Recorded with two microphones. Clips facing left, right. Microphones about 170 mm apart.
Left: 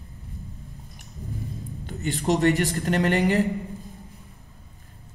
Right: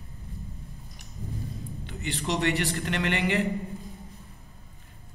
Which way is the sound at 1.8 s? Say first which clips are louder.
Left 7 dB; 45° left (ahead or behind).